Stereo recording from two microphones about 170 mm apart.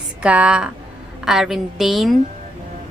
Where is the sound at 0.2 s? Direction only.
5° right (ahead or behind).